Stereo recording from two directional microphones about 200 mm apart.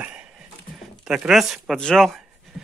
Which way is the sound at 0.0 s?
5° right (ahead or behind).